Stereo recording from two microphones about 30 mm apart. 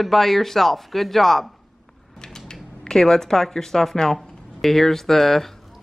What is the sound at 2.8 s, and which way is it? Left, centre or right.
Speech, centre.